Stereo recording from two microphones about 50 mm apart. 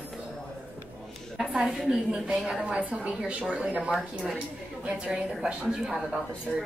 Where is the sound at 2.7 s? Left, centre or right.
Right.